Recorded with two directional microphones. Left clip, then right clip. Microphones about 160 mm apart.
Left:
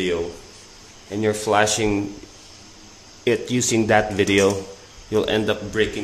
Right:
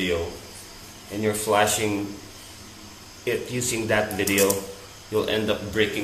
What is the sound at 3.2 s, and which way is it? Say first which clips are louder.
Speech: left 6 dB; 70° left (ahead or behind).